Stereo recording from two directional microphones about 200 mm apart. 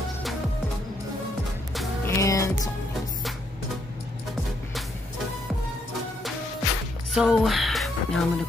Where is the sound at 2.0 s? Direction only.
15° left (ahead or behind).